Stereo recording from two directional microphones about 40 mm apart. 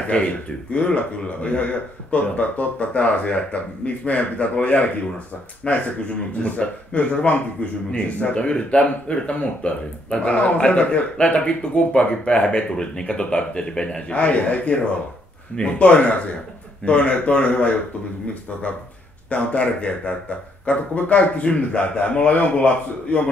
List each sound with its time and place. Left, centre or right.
0.1 s speech: left
14.1 s speech: left
15.8 s speech: left
19.3 s speech: left